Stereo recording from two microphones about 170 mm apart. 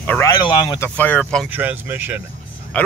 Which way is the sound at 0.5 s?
25° left (ahead or behind).